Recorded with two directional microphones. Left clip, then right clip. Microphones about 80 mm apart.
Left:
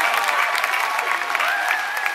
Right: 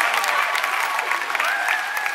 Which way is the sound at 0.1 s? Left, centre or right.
Centre.